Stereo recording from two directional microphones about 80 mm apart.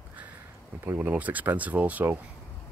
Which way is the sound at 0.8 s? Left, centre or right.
Right.